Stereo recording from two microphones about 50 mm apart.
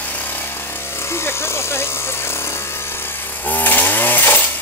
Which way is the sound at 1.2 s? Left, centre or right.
Left.